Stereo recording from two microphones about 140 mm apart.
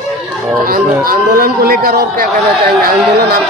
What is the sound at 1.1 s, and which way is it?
Speech, 90° right.